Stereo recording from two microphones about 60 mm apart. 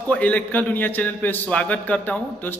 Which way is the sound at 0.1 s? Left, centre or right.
Left.